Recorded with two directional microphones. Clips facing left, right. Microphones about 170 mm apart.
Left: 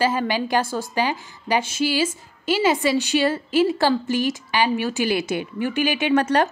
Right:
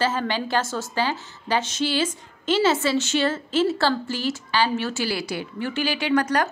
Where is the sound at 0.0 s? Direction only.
10° left (ahead or behind).